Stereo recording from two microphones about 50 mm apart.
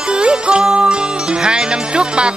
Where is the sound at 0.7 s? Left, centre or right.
Centre.